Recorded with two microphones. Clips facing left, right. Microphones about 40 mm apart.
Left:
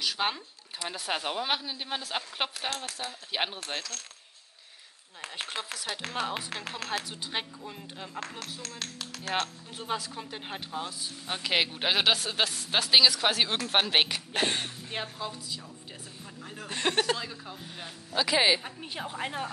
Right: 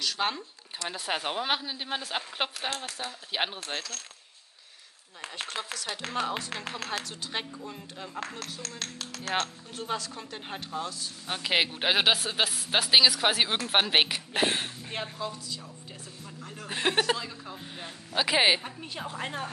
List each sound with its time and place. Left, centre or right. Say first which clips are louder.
0.0 s speech: even; centre
0.8 s a woman's voice: right 1 dB; centre
5.3 s a woman's voice: right 1 dB; centre
11.2 s speech: right 1 dB; centre
15.0 s a woman's voice: right 1 dB; centre
16.6 s speech: right 1 dB; centre
17.2 s a woman's voice: even; centre
17.8 s speech: right 1 dB; right
18.9 s speech: left 1 dB; centre